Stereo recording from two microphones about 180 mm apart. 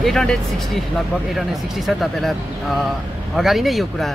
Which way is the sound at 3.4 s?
Centre (ahead or behind).